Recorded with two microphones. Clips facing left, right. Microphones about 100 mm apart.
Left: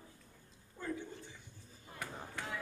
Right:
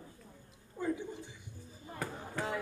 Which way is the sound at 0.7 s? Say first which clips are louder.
Right 6 dB; 15° right (ahead or behind).